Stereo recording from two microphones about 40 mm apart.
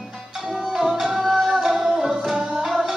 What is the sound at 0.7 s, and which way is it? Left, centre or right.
Music, centre.